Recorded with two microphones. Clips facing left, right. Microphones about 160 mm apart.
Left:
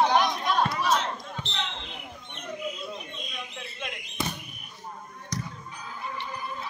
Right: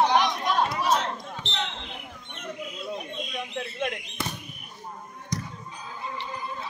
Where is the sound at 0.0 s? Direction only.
15° right (ahead or behind).